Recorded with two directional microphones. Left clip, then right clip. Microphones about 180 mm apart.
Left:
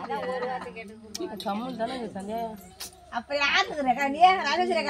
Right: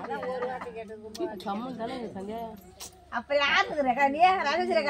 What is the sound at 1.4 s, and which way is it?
A woman's voice, 45° left (ahead or behind).